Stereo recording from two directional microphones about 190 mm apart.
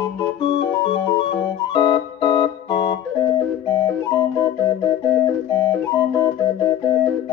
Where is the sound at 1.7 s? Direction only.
20° left (ahead or behind).